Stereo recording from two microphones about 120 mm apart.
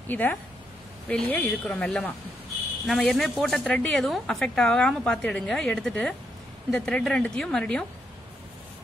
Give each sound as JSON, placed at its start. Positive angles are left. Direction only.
{"t": 0.1, "sound": "a woman's voice", "side_deg": 15}